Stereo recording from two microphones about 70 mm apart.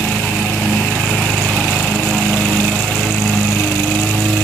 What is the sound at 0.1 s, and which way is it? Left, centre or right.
Lawn mower, centre.